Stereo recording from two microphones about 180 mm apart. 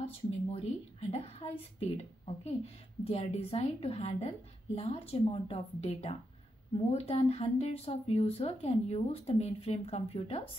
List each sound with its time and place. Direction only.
0.0 s speech: 35° left (ahead or behind)
1.8 s speech: 35° left (ahead or behind)